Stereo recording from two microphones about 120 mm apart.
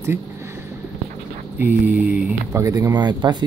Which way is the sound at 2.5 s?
25° right (ahead or behind).